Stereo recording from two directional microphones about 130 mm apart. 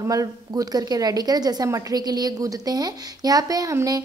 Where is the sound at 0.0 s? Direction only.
25° right (ahead or behind).